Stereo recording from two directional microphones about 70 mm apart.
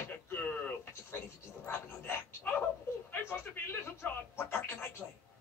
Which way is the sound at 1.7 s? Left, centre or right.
Left.